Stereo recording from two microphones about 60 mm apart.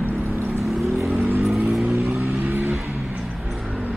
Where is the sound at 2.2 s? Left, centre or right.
Right.